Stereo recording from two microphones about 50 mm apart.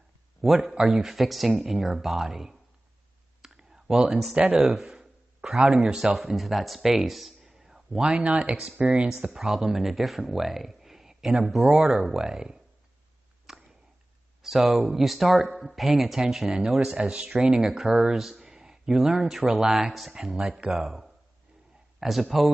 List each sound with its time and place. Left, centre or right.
0.4 s speech: centre
3.4 s clicking: centre
4.1 s speech: centre
4.5 s a sound: centre
5.8 s speech: centre
8.2 s speech: right
9.3 s speech: centre
13.5 s a sound: centre
14.4 s speech: centre